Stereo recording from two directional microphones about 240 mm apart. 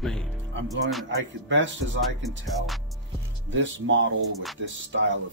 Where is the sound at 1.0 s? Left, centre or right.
Right.